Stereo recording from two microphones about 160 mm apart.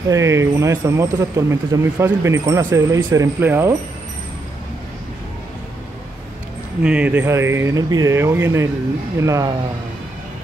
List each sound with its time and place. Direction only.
0.1 s speech: 20° right (ahead or behind)
6.8 s speech: 10° right (ahead or behind)